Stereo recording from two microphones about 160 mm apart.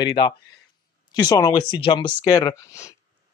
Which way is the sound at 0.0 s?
30° left (ahead or behind).